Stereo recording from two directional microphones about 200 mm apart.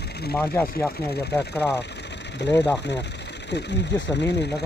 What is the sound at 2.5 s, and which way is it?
Speech, 15° left (ahead or behind).